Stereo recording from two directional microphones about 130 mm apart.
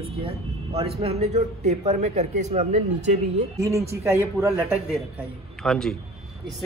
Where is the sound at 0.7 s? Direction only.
50° right (ahead or behind).